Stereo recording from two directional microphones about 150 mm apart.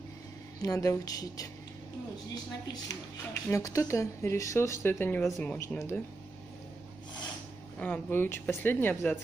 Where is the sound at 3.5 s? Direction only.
25° left (ahead or behind).